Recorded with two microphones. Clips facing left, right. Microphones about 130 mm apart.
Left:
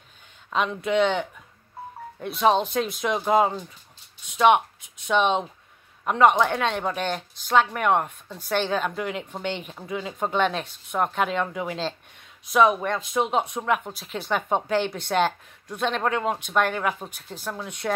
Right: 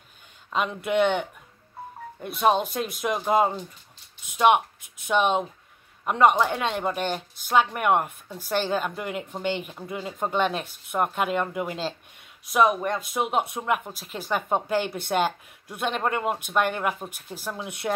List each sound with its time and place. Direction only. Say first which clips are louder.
0.5 s speech: left 1 dB; 5° right (ahead or behind)